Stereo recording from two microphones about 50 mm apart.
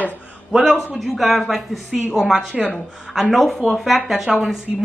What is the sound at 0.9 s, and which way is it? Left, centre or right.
A woman's voice, centre.